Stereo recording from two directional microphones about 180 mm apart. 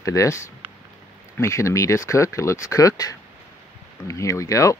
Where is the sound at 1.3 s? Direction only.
15° left (ahead or behind).